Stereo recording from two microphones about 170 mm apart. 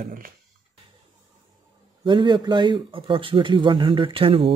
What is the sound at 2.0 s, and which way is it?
Speech, 25° right (ahead or behind).